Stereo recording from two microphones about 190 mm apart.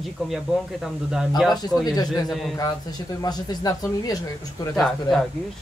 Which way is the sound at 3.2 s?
20° left (ahead or behind).